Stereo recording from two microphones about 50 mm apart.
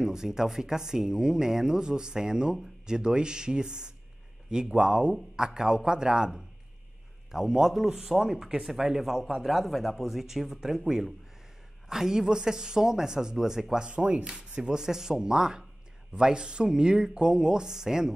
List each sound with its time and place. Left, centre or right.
0.0 s speech: centre